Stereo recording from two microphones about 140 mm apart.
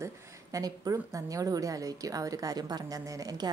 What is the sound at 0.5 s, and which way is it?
A woman's voice, 25° right (ahead or behind).